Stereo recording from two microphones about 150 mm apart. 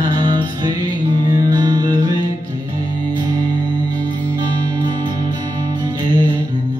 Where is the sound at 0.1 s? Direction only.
30° right (ahead or behind).